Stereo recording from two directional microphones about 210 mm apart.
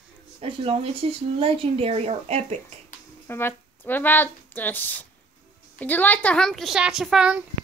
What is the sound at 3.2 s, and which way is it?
A woman's voice, 10° left (ahead or behind).